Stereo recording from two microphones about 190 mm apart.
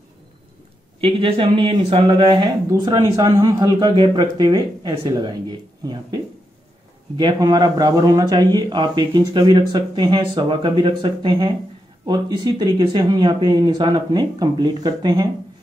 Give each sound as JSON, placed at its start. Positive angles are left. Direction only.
{"t": 1.0, "sound": "speech", "side_deg": -30}
{"t": 7.2, "sound": "speech", "side_deg": -25}